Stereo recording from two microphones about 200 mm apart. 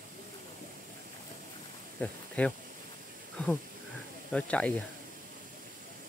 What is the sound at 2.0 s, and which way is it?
Speech, 5° left (ahead or behind).